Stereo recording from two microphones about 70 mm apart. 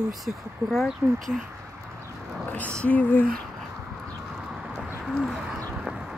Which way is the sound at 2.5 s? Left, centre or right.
Centre.